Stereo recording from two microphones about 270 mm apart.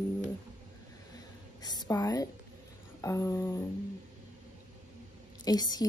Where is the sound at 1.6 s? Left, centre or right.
Centre.